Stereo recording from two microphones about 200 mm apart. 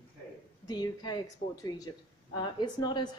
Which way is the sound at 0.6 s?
20° left (ahead or behind).